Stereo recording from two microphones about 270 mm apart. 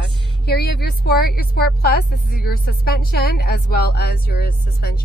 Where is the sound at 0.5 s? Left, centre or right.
Left.